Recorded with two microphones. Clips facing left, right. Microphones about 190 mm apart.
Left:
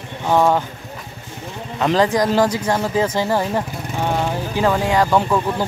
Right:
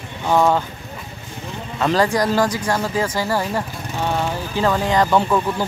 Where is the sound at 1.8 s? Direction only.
20° left (ahead or behind).